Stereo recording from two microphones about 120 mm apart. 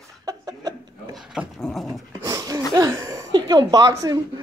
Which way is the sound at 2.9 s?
25° right (ahead or behind).